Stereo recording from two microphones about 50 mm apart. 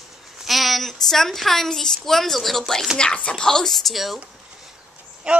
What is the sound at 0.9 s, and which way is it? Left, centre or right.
A woman's voice, centre.